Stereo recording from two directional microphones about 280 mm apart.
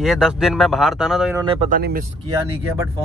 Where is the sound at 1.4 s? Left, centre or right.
Right.